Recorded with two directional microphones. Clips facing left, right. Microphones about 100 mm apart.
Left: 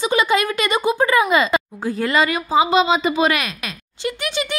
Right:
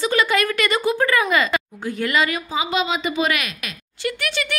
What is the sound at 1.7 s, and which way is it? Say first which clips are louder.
Speech: left 2 dB; 35° left (ahead or behind).